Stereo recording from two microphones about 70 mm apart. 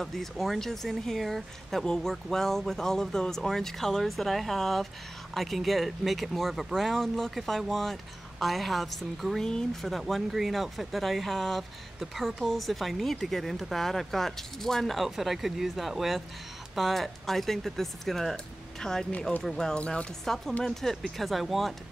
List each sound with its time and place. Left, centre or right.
0.0 s speech: centre
19.8 s speech: centre
20.6 s speech: centre